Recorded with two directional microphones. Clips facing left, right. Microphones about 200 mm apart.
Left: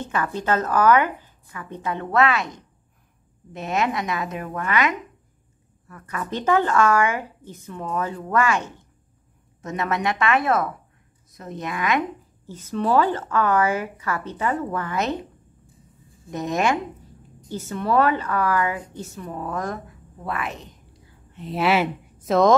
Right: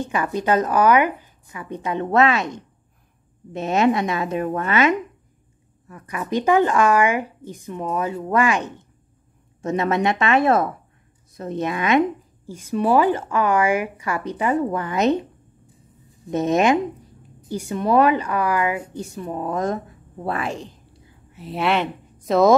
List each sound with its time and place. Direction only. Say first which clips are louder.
0.0 s a woman's voice: right 3 dB; 15° right (ahead or behind)
12.4 s a woman's voice: right 3 dB; 10° right (ahead or behind)
16.3 s a woman's voice: right 5 dB; 20° right (ahead or behind)
21.3 s speech: left 1 dB; 5° right (ahead or behind)